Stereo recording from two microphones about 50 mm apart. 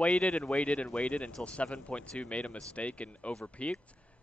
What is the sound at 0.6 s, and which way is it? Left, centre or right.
Speech, left.